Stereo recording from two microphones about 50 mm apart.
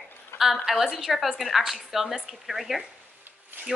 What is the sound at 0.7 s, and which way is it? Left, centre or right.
A woman's voice, centre.